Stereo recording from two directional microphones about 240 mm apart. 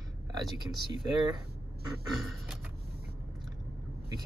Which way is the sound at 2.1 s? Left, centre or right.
Centre.